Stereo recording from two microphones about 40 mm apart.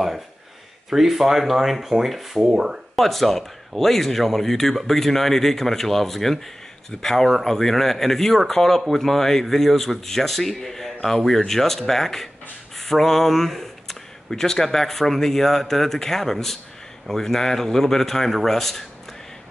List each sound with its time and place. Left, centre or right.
0.8 s speech: centre
2.5 s speech: centre
3.0 s a man's voice: centre